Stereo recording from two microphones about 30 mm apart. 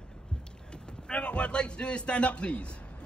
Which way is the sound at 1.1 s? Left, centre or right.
Left.